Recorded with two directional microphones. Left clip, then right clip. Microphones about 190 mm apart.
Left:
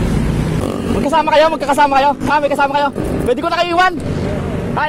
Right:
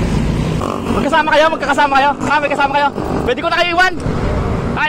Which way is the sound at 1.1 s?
60° left (ahead or behind).